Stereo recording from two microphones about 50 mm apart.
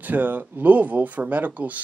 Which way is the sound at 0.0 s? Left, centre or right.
Right.